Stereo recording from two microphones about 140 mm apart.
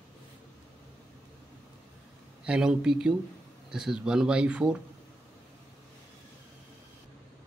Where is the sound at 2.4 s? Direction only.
5° right (ahead or behind).